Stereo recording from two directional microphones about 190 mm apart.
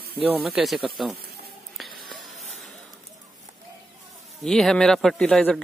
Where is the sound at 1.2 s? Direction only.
55° right (ahead or behind).